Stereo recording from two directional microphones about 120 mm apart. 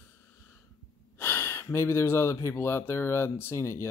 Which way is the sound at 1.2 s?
20° left (ahead or behind).